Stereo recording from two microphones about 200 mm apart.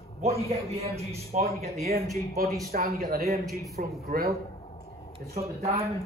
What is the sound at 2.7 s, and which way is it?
A man's voice, 50° right (ahead or behind).